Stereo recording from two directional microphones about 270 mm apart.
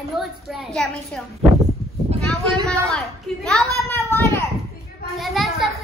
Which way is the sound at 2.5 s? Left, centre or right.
Centre.